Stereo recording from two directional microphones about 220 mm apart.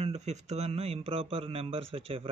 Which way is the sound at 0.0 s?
30° right (ahead or behind).